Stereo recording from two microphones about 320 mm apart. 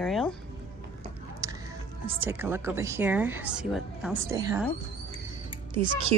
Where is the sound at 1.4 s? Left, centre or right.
Centre.